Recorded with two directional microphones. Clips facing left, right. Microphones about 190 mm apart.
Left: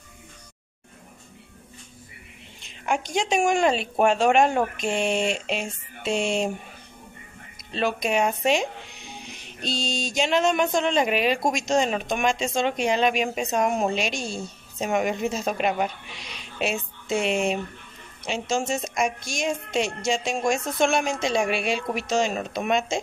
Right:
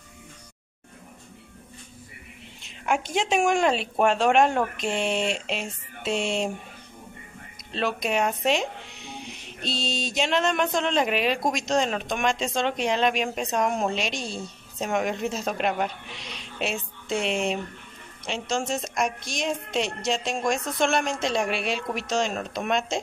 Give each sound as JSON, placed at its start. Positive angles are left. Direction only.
{"t": 2.6, "sound": "speech", "side_deg": -5}
{"t": 7.7, "sound": "speech", "side_deg": 0}